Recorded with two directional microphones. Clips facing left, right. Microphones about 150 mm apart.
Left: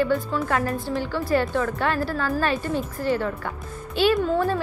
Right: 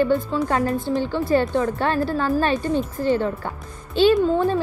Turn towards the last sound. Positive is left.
turn(degrees=-25)  # may be behind; listen again after turning